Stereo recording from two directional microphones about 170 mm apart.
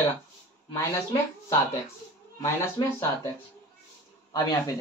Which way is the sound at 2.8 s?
30° left (ahead or behind).